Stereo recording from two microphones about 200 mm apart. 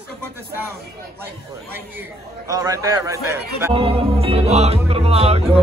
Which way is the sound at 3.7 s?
25° right (ahead or behind).